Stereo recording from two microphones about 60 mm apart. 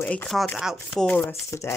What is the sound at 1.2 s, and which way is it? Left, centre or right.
Speech, left.